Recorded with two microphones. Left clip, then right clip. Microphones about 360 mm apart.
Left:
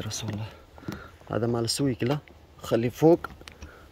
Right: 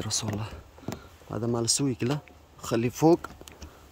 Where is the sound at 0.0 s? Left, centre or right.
Centre.